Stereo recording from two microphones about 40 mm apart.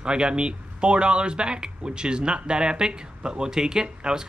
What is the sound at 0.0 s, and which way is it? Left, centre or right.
Speech, right.